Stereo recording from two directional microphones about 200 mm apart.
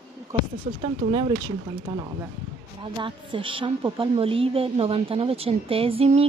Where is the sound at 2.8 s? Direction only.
25° right (ahead or behind).